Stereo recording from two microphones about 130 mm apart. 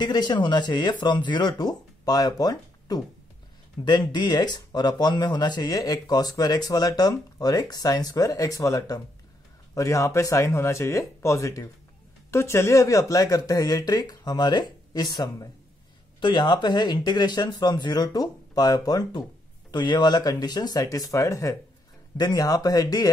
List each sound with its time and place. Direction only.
0.0 s speech: 35° left (ahead or behind)